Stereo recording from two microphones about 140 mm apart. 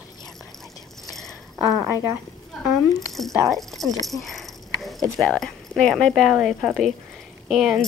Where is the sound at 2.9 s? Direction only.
Centre (ahead or behind).